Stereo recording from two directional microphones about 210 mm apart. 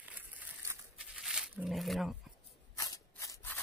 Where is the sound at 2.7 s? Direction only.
15° left (ahead or behind).